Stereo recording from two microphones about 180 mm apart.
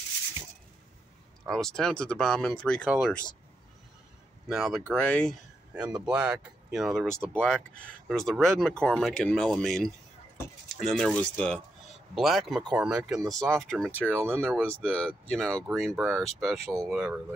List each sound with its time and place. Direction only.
1.4 s speech: centre (ahead or behind)
4.5 s speech: centre (ahead or behind)
14.1 s speech: 15° right (ahead or behind)
14.5 s speech: 5° left (ahead or behind)